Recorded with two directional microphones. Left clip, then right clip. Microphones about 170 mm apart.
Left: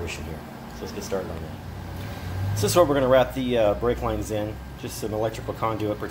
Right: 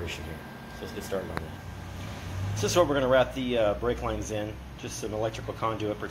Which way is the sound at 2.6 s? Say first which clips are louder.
Left 5 dB; 15° left (ahead or behind).